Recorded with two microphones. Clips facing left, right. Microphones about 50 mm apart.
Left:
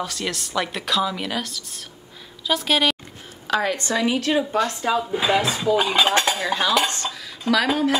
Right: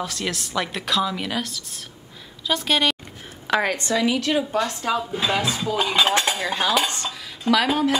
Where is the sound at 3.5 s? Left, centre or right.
Right.